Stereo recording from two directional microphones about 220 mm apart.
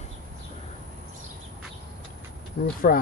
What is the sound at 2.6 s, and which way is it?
Speech, 45° left (ahead or behind).